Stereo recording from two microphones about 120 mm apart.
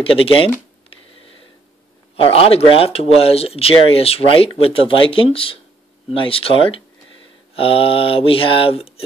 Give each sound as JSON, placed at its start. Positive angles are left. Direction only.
{"t": 0.0, "sound": "speech", "side_deg": 50}
{"t": 2.1, "sound": "speech", "side_deg": 50}